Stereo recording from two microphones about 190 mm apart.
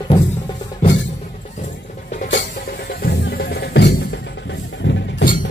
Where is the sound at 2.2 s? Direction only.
60° left (ahead or behind).